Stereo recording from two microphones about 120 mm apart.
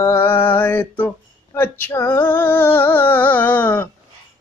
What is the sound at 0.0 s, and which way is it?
Speech, 20° left (ahead or behind).